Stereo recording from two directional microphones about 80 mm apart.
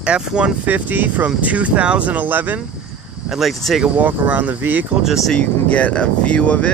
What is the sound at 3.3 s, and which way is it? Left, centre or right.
Speech, centre.